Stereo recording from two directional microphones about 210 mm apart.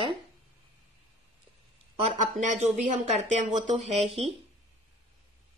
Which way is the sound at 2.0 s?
35° right (ahead or behind).